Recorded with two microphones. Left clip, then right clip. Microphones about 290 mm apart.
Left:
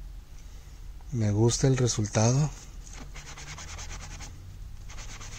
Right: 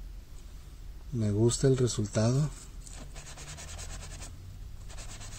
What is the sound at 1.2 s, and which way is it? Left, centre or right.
Speech, left.